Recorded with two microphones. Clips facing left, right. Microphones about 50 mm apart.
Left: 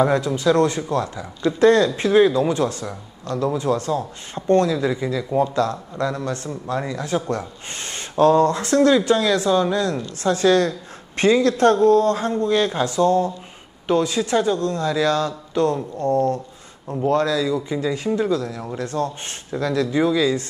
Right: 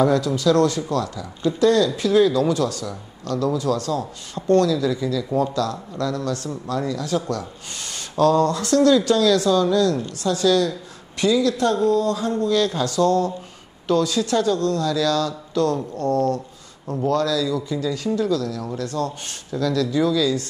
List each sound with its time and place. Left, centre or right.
0.0 s speech: left